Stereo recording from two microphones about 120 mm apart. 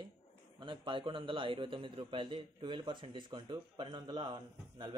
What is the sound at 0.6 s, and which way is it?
A man's voice, 40° right (ahead or behind).